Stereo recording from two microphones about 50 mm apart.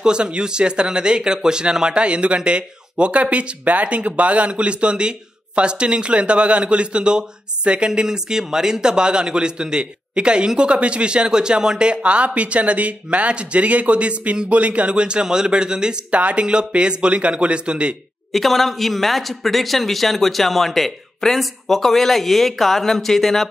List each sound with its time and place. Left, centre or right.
0.0 s speech: centre
18.3 s speech: centre